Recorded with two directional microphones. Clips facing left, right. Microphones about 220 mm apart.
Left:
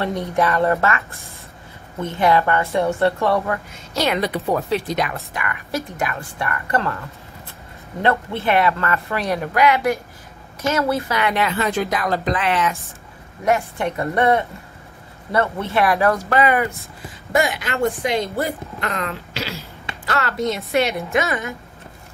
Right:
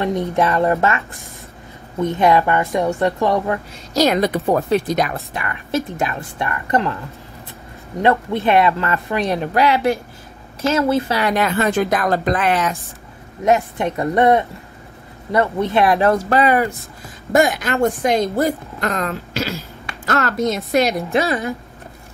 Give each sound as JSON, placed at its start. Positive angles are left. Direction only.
{"t": 0.0, "sound": "speech", "side_deg": -20}
{"t": 3.7, "sound": "speech", "side_deg": -40}
{"t": 8.0, "sound": "speech", "side_deg": -15}
{"t": 13.7, "sound": "speech", "side_deg": -15}
{"t": 15.8, "sound": "speech", "side_deg": -25}
{"t": 17.3, "sound": "speech", "side_deg": -45}